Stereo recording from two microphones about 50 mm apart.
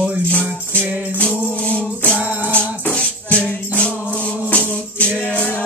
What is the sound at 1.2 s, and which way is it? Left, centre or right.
Music, left.